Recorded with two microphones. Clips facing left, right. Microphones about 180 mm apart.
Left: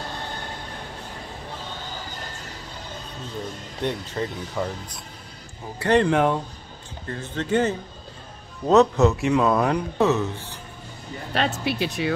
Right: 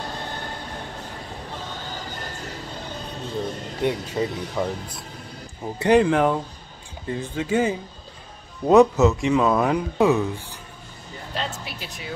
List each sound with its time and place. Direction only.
3.8 s speech: 10° right (ahead or behind)
5.9 s speech: 5° right (ahead or behind)
9.9 s speech: 15° right (ahead or behind)
11.3 s speech: 70° left (ahead or behind)